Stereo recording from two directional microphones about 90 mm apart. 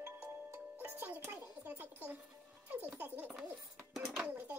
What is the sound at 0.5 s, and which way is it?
Music, 25° right (ahead or behind).